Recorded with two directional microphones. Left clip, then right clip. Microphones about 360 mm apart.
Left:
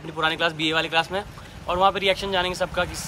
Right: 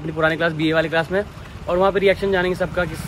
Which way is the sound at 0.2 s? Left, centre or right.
Centre.